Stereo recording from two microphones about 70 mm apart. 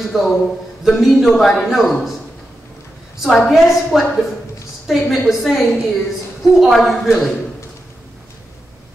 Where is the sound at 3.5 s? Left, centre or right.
Centre.